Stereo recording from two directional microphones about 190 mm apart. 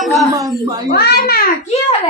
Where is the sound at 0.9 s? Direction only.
55° left (ahead or behind).